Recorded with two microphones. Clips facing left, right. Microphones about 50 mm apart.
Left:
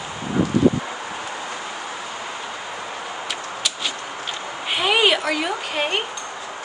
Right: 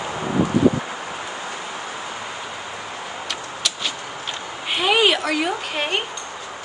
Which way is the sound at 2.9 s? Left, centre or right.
Centre.